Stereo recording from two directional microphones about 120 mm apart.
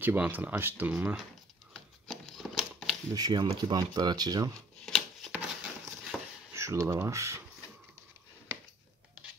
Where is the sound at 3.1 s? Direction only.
35° right (ahead or behind).